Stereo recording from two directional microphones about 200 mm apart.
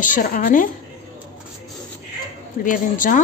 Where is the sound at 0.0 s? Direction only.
40° left (ahead or behind).